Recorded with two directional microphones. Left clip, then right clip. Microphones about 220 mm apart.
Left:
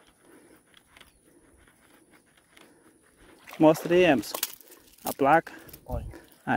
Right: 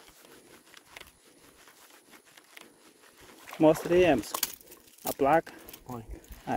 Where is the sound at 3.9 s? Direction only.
50° left (ahead or behind).